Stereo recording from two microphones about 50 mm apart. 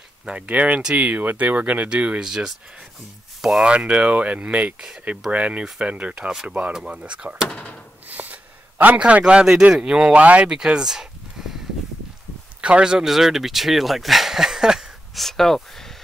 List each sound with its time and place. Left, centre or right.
0.3 s speech: right
2.2 s speech: centre
3.6 s speech: right
8.1 s a sound: right
9.0 s speech: right
10.4 s a sound: centre
12.6 s speech: centre
13.1 s speech: centre
15.1 s speech: centre